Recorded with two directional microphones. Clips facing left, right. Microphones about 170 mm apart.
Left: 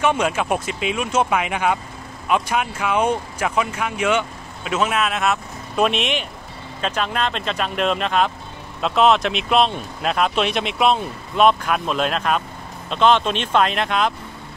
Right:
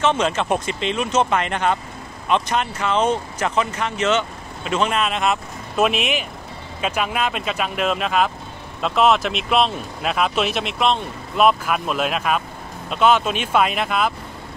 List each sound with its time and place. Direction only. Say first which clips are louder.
0.0 s speech: even; 10° left (ahead or behind)